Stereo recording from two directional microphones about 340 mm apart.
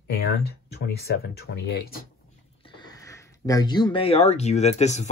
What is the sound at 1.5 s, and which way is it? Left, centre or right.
Speech, left.